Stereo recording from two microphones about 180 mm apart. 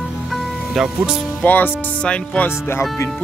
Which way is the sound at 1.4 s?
10° left (ahead or behind).